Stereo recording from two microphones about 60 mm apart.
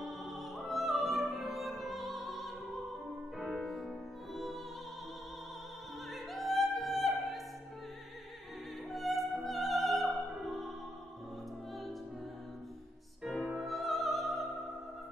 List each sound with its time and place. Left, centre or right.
0.0 s music: centre
6.1 s opera: centre
8.9 s music: centre
13.3 s music: centre